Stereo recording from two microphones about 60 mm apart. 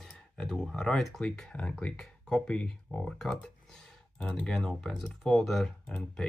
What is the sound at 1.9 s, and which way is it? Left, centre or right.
Speech, centre.